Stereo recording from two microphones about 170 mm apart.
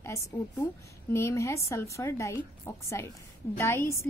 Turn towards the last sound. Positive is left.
turn(degrees=15)  # may be behind; listen again after turning